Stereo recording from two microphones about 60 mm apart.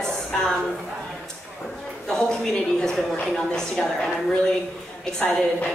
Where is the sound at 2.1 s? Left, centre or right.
Centre.